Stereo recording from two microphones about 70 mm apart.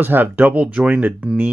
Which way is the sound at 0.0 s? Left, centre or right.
Right.